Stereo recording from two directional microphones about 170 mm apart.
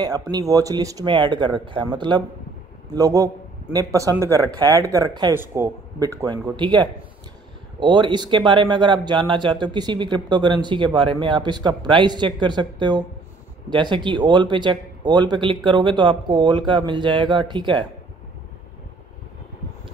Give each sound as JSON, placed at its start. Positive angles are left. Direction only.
{"t": 0.0, "sound": "speech", "side_deg": -25}